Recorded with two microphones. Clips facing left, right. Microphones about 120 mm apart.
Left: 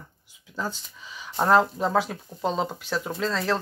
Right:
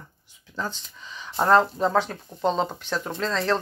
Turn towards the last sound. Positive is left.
turn(degrees=5)  # may be behind; listen again after turning